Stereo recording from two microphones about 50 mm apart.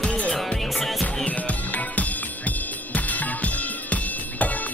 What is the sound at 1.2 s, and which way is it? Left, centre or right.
Music, left.